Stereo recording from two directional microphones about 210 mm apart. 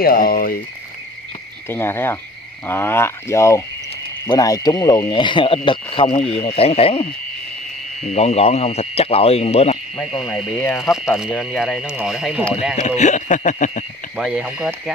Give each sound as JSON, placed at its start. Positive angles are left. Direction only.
{"t": 0.0, "sound": "speech", "side_deg": 45}
{"t": 1.7, "sound": "speech", "side_deg": 10}
{"t": 10.8, "sound": "speech", "side_deg": 0}
{"t": 12.8, "sound": "speech", "side_deg": 35}
{"t": 14.1, "sound": "speech", "side_deg": -5}